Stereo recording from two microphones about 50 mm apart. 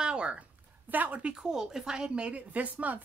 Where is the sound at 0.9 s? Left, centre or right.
Right.